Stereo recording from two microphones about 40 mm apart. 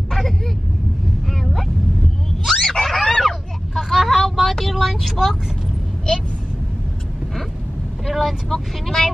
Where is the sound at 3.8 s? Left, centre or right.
Centre.